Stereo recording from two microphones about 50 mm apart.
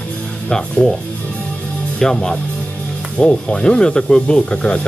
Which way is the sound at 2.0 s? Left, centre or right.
Centre.